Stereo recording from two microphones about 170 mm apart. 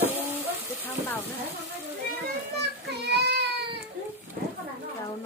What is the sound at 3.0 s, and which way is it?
Baby cry, 70° right (ahead or behind).